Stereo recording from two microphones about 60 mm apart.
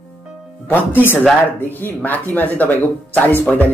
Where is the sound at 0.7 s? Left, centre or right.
Left.